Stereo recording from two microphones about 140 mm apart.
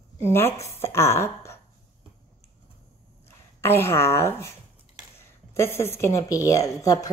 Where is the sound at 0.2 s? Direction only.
15° left (ahead or behind).